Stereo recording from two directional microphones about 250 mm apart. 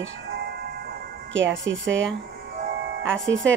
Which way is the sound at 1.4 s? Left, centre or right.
Right.